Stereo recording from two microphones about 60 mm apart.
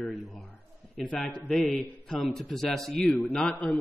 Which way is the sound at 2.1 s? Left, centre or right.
Centre.